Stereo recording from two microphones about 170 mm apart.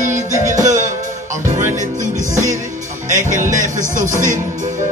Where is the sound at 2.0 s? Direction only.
50° right (ahead or behind).